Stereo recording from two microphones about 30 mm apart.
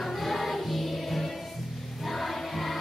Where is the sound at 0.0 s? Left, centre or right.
Centre.